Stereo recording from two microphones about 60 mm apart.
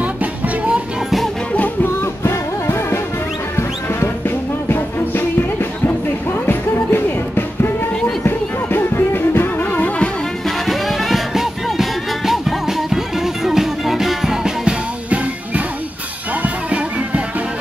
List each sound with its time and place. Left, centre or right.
0.0 s music: right
2.0 s music: left
4.6 s music: left
10.7 s music: centre
16.4 s music: right